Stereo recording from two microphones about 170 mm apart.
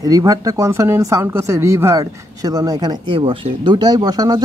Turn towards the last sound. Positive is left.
turn(degrees=-20)  # may be behind; listen again after turning